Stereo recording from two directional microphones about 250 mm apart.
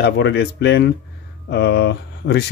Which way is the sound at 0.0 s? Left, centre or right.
Left.